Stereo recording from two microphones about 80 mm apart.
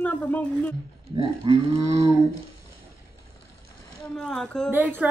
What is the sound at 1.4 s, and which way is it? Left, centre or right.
Livestock, right.